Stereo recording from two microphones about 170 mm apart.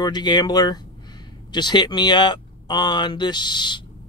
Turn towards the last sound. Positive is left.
turn(degrees=25)  # may be behind; listen again after turning